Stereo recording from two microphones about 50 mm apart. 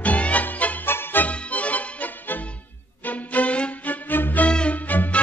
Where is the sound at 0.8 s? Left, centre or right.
Left.